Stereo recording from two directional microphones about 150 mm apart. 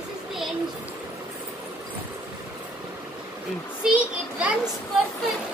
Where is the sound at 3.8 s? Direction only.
5° right (ahead or behind).